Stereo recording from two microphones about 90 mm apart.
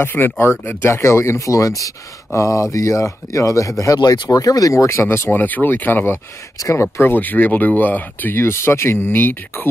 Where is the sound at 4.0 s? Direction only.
50° left (ahead or behind); by 6.2 s 20° left (ahead or behind).